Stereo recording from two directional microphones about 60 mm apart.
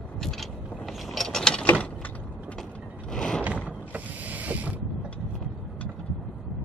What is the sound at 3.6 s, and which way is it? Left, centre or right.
Mechanisms, right.